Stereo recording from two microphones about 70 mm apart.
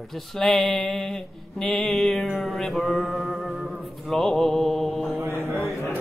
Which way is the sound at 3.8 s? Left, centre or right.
Centre.